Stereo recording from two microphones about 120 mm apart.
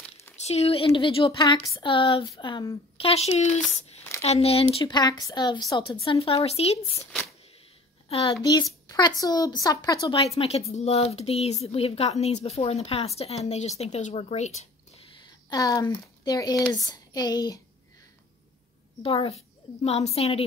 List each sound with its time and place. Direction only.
0.4 s speech: 60° left (ahead or behind); by 2.7 s 40° left (ahead or behind)
3.0 s speech: 55° left (ahead or behind)
4.9 s speech: 35° left (ahead or behind)
5.8 s speech: 50° left (ahead or behind)
8.1 s speech: 50° left (ahead or behind)
8.8 s a sound: 35° left (ahead or behind)
9.2 s speech: 30° left (ahead or behind)
10.3 s speech: 60° left (ahead or behind)
15.5 s speech: 30° left (ahead or behind)
16.8 s child singing: 35° left (ahead or behind)
19.0 s speech: 50° left (ahead or behind)
19.8 s speech: 65° left (ahead or behind)